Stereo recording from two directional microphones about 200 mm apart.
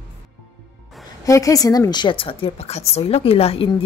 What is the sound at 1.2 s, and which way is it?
A woman's voice, 15° left (ahead or behind).